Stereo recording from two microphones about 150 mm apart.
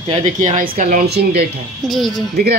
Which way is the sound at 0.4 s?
55° right (ahead or behind).